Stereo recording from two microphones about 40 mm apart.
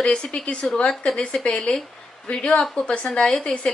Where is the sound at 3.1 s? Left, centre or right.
Centre.